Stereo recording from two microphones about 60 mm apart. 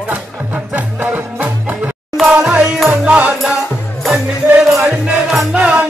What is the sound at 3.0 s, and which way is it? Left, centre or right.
Music, right.